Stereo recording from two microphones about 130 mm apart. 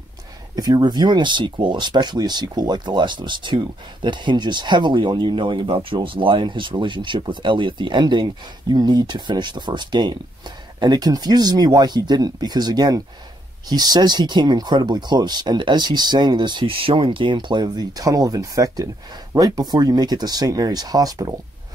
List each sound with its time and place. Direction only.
0.6 s speech: 30° right (ahead or behind)